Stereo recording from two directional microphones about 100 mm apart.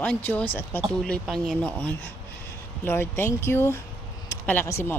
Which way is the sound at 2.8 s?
25° left (ahead or behind).